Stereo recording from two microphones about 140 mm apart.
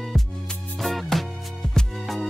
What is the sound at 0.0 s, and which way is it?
Music, centre (ahead or behind).